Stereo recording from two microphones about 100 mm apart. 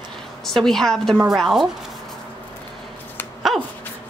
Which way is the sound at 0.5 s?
5° left (ahead or behind).